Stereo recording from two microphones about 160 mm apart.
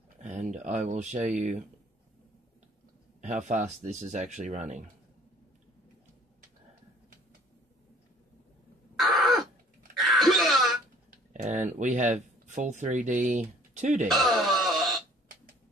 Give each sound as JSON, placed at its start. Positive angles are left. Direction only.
{"t": 0.2, "sound": "speech", "side_deg": -50}
{"t": 3.2, "sound": "speech", "side_deg": -50}
{"t": 8.9, "sound": "a sound", "side_deg": 0}
{"t": 11.1, "sound": "dishes", "side_deg": -50}
{"t": 11.7, "sound": "speech", "side_deg": -50}
{"t": 14.0, "sound": "wail", "side_deg": 0}